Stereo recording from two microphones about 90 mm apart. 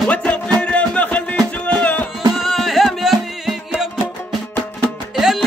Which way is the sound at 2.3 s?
Centre (ahead or behind).